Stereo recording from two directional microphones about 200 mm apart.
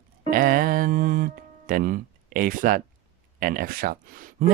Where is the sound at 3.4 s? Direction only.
45° right (ahead or behind).